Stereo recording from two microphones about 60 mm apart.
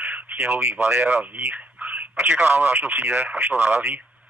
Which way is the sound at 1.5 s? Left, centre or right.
Right.